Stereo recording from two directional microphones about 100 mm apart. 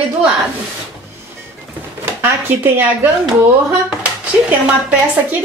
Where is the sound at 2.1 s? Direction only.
20° right (ahead or behind).